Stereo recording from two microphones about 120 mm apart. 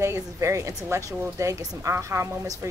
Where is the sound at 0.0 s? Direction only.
25° right (ahead or behind).